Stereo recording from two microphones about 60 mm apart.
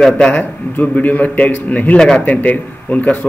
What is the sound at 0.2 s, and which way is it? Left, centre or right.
Speech, left.